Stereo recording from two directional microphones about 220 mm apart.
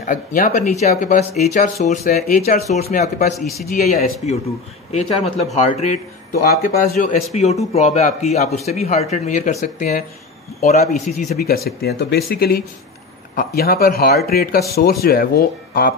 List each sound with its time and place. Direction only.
0.0 s speech: 40° left (ahead or behind)
3.3 s speech: centre (ahead or behind)
3.7 s speech: 35° left (ahead or behind)
7.3 s speech: 30° left (ahead or behind)